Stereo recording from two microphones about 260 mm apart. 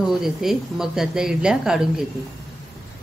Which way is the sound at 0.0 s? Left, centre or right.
Centre.